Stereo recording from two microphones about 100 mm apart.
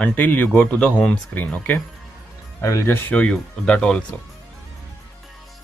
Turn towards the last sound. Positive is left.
turn(degrees=10)  # may be behind; listen again after turning